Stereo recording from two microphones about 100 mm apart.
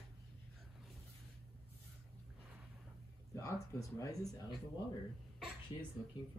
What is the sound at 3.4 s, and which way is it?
Speech, 30° left (ahead or behind).